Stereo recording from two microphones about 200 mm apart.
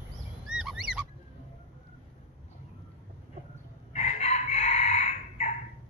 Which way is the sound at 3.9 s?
35° left (ahead or behind).